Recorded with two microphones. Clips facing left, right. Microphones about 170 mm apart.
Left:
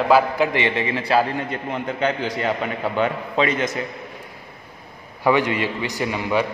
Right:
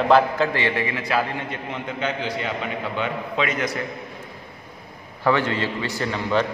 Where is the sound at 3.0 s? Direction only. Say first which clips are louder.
Left 5 dB; 30° left (ahead or behind).